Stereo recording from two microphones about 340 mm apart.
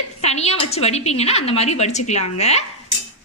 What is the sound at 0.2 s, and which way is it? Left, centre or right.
A woman's voice, centre.